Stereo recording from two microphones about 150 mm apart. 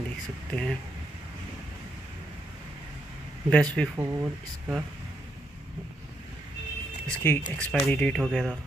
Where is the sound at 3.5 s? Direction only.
5° left (ahead or behind).